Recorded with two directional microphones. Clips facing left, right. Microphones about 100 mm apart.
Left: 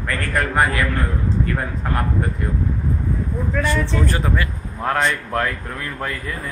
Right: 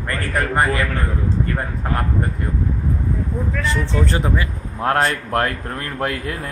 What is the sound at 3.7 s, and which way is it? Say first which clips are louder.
Speech: right 2 dB; 25° right (ahead or behind).